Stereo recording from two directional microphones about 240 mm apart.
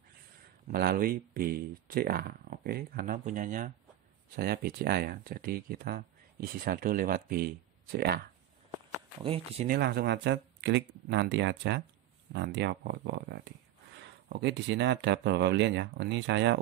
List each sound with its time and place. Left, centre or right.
0.7 s speech: right
8.7 s a sound: right
9.7 s speech: right